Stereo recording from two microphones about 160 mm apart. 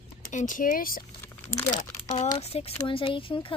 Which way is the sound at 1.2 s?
15° left (ahead or behind).